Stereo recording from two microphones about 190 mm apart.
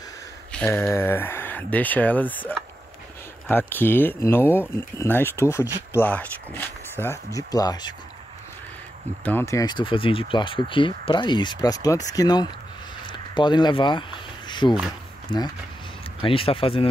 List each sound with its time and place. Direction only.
0.5 s speech: 10° left (ahead or behind)
9.2 s speech: 10° left (ahead or behind)
14.5 s a sound: 25° left (ahead or behind)
15.2 s speech: 20° left (ahead or behind)